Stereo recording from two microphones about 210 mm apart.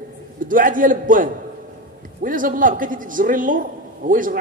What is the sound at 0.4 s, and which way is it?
A man's voice, 40° right (ahead or behind).